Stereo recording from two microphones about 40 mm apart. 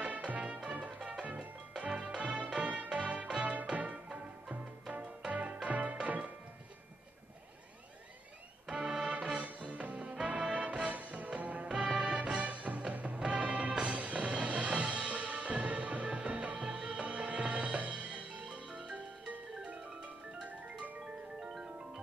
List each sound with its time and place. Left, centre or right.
0.0 s music: right
4.1 s music: right
5.3 s music: right
8.8 s music: centre
9.4 s music: right
10.9 s music: right